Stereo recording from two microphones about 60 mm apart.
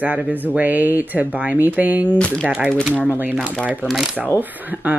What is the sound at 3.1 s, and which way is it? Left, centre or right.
Speech, right.